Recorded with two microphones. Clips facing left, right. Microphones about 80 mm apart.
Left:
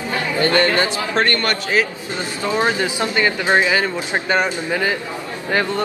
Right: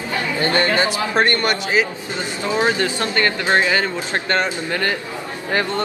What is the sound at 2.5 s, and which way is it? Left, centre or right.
Speech, centre.